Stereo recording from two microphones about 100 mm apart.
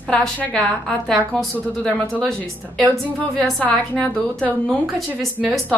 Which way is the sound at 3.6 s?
15° left (ahead or behind).